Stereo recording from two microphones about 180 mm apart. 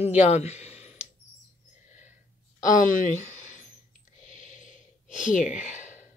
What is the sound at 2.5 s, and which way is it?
Speech, 45° left (ahead or behind).